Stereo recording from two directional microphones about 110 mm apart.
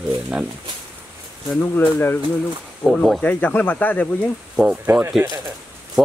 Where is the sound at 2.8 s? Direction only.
Centre (ahead or behind).